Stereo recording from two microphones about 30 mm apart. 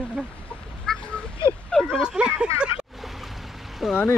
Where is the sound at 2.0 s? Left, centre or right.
Right.